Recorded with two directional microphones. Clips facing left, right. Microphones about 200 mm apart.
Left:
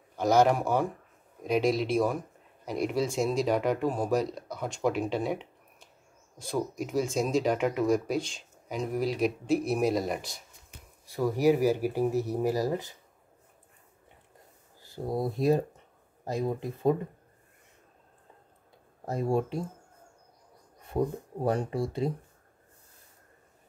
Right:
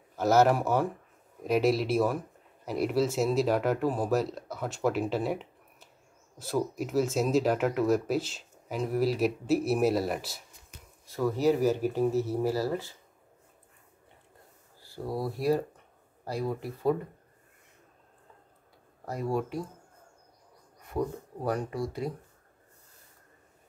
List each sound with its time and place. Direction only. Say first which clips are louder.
0.1 s speech: even; 5° right (ahead or behind)
11.1 s speech: left 1 dB; 15° left (ahead or behind)
14.8 s speech: left 2 dB; 20° left (ahead or behind)
19.0 s speech: left 3 dB; 25° left (ahead or behind)
20.8 s speech: left 2 dB; 25° left (ahead or behind)